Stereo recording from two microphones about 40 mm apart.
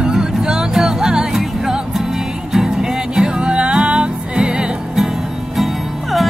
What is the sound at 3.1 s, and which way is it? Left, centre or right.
Music, right.